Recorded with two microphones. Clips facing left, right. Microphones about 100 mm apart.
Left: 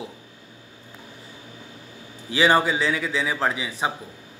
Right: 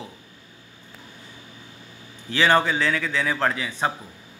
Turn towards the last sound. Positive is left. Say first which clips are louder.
# right 1 dB
turn(degrees=10)  # may be behind; listen again after turning